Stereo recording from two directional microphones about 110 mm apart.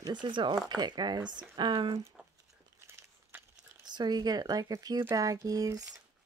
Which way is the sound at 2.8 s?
20° right (ahead or behind).